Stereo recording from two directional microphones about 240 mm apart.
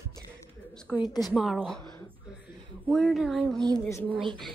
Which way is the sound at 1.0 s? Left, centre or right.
Centre.